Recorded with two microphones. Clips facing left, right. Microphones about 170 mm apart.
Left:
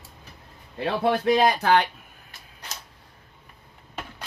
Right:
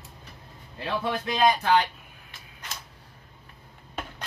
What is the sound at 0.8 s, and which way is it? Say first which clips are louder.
Speech: left 7 dB; 60° left (ahead or behind).